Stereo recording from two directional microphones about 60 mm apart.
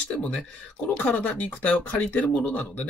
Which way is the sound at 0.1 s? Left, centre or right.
Centre.